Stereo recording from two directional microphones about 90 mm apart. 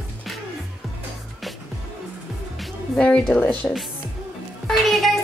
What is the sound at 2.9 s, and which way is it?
Speech, 15° left (ahead or behind).